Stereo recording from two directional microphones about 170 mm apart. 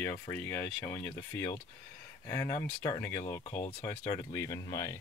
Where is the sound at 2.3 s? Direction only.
20° left (ahead or behind).